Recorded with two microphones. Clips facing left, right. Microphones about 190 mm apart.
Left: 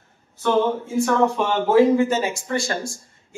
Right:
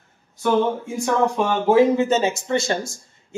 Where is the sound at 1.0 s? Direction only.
15° right (ahead or behind).